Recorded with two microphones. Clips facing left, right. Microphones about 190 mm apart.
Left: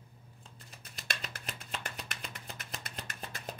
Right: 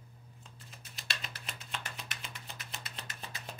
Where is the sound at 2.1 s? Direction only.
40° left (ahead or behind).